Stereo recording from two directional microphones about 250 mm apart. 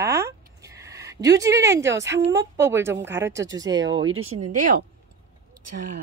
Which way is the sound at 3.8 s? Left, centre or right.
Right.